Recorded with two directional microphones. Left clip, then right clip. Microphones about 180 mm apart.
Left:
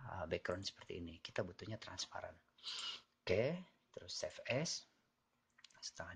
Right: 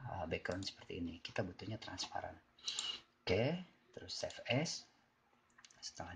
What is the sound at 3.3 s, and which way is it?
Speech, 50° left (ahead or behind).